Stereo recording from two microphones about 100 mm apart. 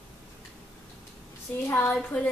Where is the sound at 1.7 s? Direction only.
20° left (ahead or behind).